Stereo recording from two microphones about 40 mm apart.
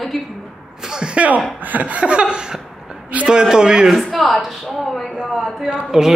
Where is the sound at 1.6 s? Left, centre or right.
Right; by 3.8 s centre.